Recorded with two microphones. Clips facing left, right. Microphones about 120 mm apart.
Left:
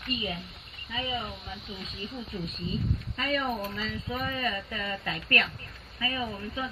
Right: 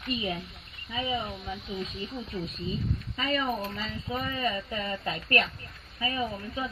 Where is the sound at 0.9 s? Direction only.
15° right (ahead or behind).